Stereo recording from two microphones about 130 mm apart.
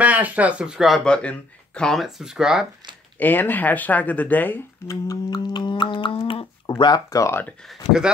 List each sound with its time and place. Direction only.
0.0 s speech: 10° right (ahead or behind)
3.2 s speech: 15° left (ahead or behind)
5.0 s humming: 30° left (ahead or behind)
6.8 s speech: 30° left (ahead or behind)